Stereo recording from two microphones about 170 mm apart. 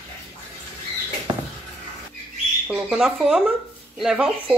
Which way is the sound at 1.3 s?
20° right (ahead or behind).